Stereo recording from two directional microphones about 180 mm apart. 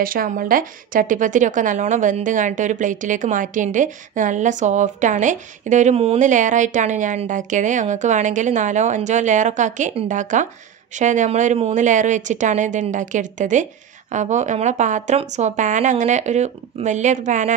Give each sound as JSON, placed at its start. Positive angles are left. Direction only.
{"t": 0.0, "sound": "a woman's voice", "side_deg": -50}